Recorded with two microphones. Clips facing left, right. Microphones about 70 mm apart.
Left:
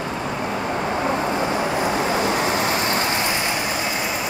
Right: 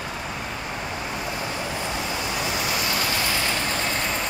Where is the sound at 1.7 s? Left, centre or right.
Left.